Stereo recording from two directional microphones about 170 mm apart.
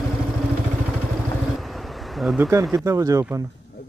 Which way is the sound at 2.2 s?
10° right (ahead or behind).